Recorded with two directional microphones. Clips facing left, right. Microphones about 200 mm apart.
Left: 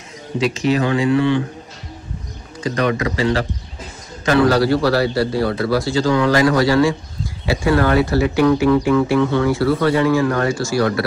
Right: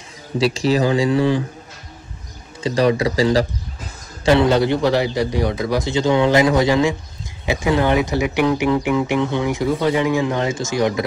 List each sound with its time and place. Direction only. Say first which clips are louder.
0.4 s speech: even; 35° right (ahead or behind)
2.6 s a man's voice: right 2 dB; 30° right (ahead or behind)